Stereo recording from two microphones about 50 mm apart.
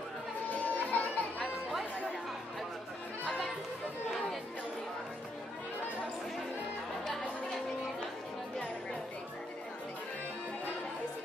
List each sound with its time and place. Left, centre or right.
0.5 s music: left